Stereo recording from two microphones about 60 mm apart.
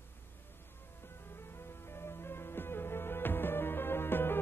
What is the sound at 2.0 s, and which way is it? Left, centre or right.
Music, left.